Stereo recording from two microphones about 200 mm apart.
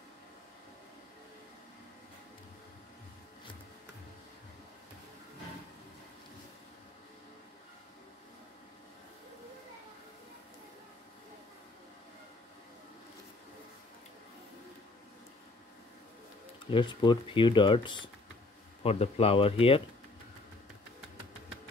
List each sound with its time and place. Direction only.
16.7 s speech: 25° left (ahead or behind)